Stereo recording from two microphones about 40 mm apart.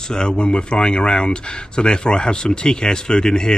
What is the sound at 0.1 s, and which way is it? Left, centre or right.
Speech, centre.